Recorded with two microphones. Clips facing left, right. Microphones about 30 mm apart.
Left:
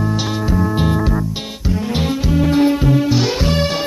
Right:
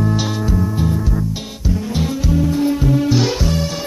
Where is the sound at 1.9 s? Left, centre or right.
Left; by 3.3 s centre.